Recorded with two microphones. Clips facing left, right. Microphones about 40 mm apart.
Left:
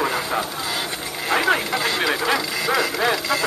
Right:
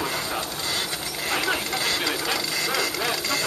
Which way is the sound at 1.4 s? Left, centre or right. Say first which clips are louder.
Left 7 dB; left.